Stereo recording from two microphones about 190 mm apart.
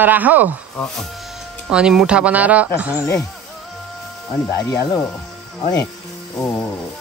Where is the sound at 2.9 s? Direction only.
15° left (ahead or behind).